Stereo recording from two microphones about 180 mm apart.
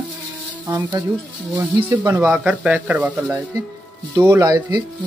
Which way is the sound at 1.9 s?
15° right (ahead or behind).